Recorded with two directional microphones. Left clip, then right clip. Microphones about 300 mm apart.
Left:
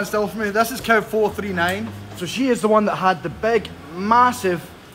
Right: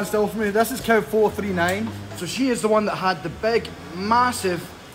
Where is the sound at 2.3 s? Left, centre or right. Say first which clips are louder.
Left 3 dB; left.